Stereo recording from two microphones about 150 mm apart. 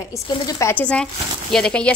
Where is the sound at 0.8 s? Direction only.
5° left (ahead or behind).